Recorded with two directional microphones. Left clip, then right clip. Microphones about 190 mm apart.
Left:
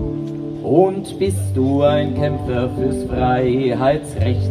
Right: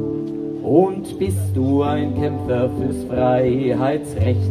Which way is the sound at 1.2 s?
30° right (ahead or behind).